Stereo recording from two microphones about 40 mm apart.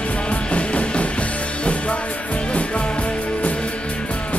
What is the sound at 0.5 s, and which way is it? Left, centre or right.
Music, left.